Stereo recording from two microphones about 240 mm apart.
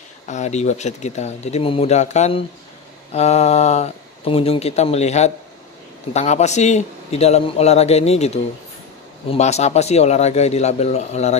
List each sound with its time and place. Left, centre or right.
0.3 s speech: left